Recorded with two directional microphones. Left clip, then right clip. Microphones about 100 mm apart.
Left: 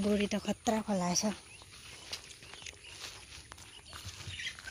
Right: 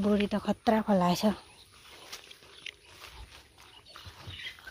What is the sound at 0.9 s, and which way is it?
Speech, 40° right (ahead or behind).